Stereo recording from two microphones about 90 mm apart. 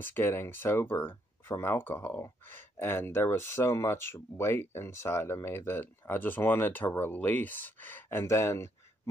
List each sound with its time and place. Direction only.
0.0 s speech: 25° left (ahead or behind)